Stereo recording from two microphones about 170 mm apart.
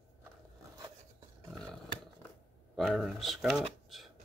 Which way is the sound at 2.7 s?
Centre (ahead or behind).